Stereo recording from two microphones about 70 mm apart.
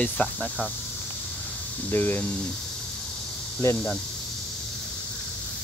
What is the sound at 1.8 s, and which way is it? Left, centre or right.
Speech, left.